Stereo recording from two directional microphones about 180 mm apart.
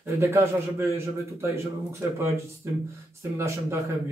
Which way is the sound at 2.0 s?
15° right (ahead or behind).